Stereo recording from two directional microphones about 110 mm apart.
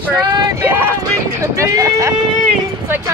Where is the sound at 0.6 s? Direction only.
20° right (ahead or behind).